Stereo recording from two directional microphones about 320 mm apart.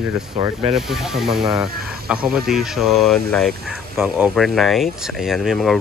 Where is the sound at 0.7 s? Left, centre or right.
Centre.